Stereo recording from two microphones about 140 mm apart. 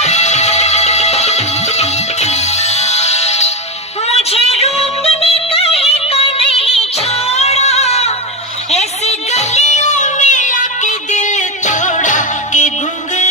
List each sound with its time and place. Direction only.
0.0 s music: 55° left (ahead or behind)